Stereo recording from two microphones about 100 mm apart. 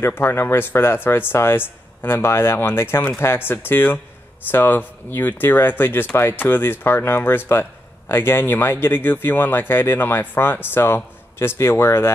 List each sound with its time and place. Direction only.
0.0 s speech: 25° left (ahead or behind)